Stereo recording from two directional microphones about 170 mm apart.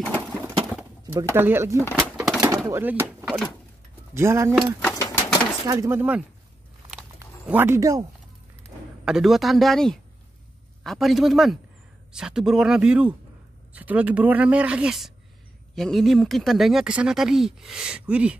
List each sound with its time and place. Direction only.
1.0 s speech: 15° right (ahead or behind)
2.0 s bird: 5° right (ahead or behind)
2.5 s a sound: 15° right (ahead or behind)
4.1 s speech: 15° right (ahead or behind)
4.7 s sewing machine: 15° left (ahead or behind)
5.7 s speech: 15° right (ahead or behind)
7.4 s speech: 10° right (ahead or behind)
9.0 s speech: centre (ahead or behind)